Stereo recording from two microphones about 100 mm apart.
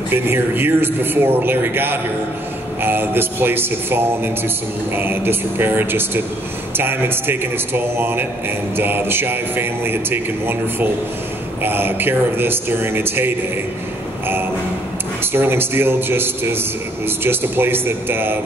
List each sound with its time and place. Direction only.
0.1 s a man's voice: 20° right (ahead or behind)
15.3 s a man's voice: 20° right (ahead or behind)